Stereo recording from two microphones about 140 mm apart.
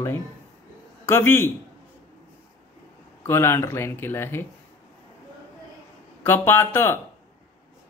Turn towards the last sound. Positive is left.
turn(degrees=15)  # may be behind; listen again after turning